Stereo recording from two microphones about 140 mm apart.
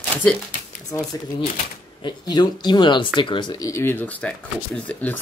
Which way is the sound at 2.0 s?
30° left (ahead or behind).